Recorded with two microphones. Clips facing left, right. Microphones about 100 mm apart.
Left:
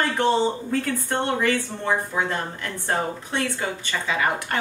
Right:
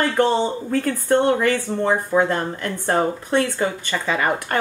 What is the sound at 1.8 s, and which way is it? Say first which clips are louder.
Speech: right 6 dB; 55° right (ahead or behind).